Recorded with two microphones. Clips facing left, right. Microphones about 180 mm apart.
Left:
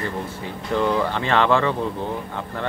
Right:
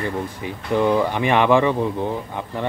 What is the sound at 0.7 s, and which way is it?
Speech, 15° right (ahead or behind).